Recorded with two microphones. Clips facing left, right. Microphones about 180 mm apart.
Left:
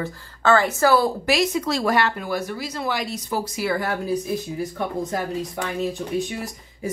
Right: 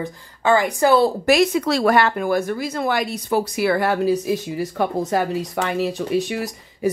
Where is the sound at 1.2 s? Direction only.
55° right (ahead or behind).